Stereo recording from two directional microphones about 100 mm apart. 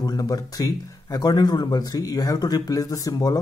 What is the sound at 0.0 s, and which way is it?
Speech, 40° left (ahead or behind).